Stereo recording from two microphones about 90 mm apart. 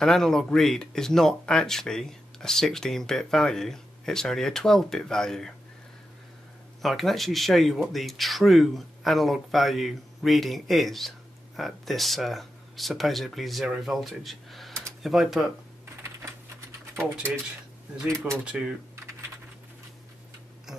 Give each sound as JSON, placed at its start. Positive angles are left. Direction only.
{"t": 0.0, "sound": "speech", "side_deg": 5}
{"t": 6.8, "sound": "speech", "side_deg": 0}
{"t": 18.4, "sound": "speech", "side_deg": -10}